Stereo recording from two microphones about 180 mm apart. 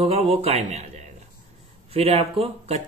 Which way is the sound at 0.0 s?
35° right (ahead or behind).